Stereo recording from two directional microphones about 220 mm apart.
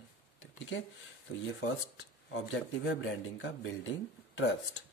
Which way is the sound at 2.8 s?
55° left (ahead or behind).